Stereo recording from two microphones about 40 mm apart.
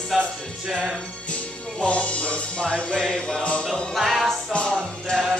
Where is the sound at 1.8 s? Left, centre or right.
Left; by 3.4 s centre.